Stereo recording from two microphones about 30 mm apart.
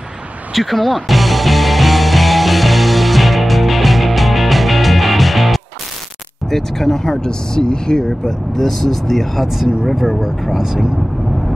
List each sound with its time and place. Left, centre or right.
0.5 s music: centre
6.5 s speech: centre; by 8.1 s left
8.3 s speech: centre
10.5 s speech: centre